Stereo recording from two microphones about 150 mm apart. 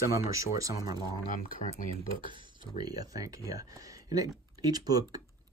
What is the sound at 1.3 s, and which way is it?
Speech, 60° left (ahead or behind).